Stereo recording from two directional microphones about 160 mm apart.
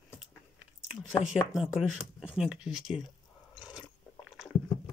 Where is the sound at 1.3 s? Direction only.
5° right (ahead or behind).